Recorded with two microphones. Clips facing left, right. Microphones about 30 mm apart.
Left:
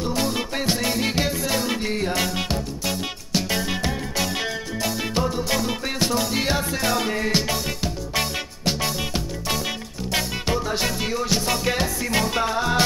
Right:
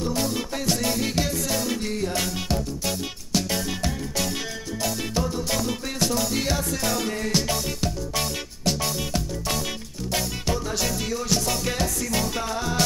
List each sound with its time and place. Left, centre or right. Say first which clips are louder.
0.0 s music: left 2 dB; left